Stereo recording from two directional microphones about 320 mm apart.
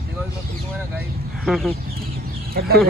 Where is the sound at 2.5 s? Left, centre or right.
Right.